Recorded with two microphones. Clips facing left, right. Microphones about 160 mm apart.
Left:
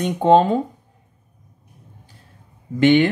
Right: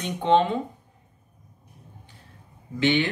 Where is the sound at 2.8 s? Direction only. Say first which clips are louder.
Left 8 dB; 50° left (ahead or behind).